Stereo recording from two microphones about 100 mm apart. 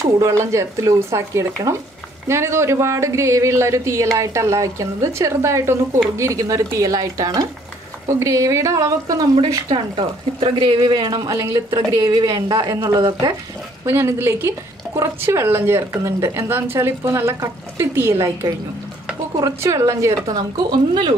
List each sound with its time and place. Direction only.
0.0 s a woman's voice: 30° right (ahead or behind)
9.7 s speech: 55° right (ahead or behind); by 13.3 s 40° right (ahead or behind)
13.8 s a woman's voice: 25° right (ahead or behind)
19.6 s speech: 30° right (ahead or behind)
20.3 s speech: 50° right (ahead or behind)